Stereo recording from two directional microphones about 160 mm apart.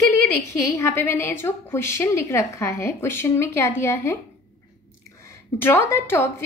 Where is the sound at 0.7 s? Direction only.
15° left (ahead or behind).